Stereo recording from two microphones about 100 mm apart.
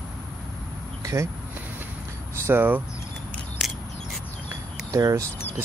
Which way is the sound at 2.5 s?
20° right (ahead or behind).